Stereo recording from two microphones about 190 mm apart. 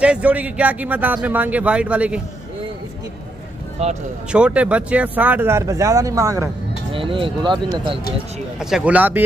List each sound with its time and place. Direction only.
0.0 s speech: 5° right (ahead or behind)
3.8 s speech: 35° right (ahead or behind)
4.3 s speech: 5° right (ahead or behind)
6.9 s speech: 25° right (ahead or behind)
8.5 s speech: 5° right (ahead or behind)